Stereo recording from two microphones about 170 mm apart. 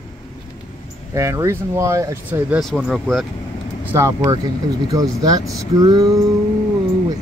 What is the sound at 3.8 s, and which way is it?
Speech, 15° right (ahead or behind).